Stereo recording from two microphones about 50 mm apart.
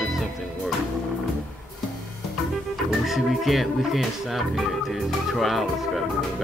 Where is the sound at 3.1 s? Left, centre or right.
Centre.